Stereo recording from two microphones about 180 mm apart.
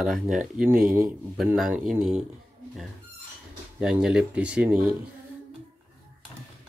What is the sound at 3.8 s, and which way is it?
Speech, 5° right (ahead or behind).